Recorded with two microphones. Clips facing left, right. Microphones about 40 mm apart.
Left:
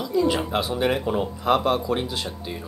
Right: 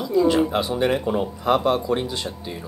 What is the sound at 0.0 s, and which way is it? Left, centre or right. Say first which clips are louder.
Speech: right 4 dB; centre.